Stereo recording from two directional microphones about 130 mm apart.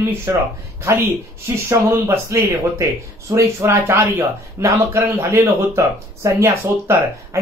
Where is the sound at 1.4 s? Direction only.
20° right (ahead or behind).